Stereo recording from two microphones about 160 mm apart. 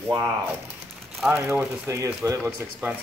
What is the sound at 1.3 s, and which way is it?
A man's voice, 10° right (ahead or behind).